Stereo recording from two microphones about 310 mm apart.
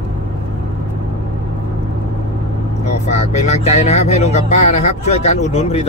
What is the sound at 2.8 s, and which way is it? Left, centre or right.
Speech, left.